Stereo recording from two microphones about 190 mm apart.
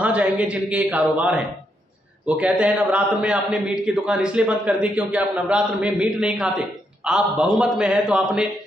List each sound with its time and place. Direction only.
0.0 s a man's voice: 5° right (ahead or behind)